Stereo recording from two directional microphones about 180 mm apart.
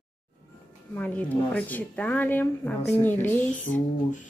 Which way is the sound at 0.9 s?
10° left (ahead or behind).